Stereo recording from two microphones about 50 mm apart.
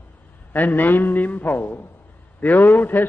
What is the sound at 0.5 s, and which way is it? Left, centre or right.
A man's voice, left.